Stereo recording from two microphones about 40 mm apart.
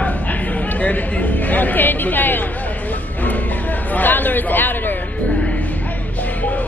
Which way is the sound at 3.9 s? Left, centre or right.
Left.